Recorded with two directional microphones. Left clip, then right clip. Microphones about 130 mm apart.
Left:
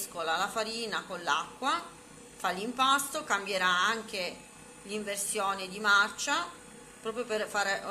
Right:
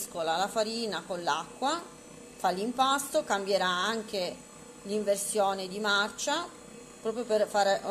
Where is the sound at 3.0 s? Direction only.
90° right.